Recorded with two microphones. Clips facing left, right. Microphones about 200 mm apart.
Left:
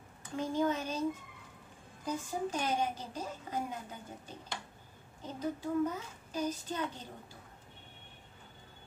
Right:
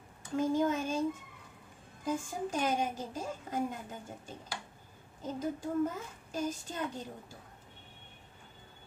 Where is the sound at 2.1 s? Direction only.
50° right (ahead or behind).